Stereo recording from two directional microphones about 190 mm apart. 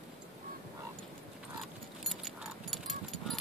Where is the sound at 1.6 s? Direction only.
Centre (ahead or behind).